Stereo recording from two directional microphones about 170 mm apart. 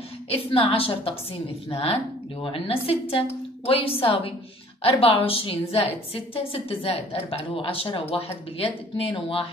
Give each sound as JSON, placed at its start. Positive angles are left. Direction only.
{"t": 0.3, "sound": "a woman's voice", "side_deg": 35}